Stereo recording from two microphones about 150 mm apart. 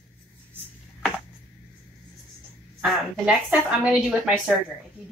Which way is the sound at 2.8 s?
5° right (ahead or behind).